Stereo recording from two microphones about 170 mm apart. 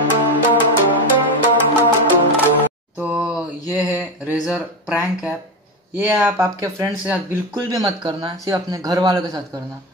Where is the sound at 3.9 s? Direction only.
10° right (ahead or behind).